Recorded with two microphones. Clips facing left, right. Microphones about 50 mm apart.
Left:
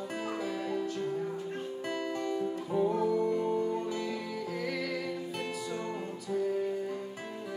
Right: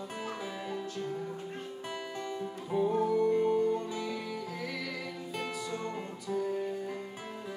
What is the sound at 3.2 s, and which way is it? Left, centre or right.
Music, right.